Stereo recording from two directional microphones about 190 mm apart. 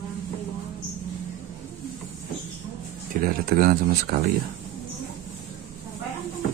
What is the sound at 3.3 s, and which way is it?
Speech, 50° right (ahead or behind).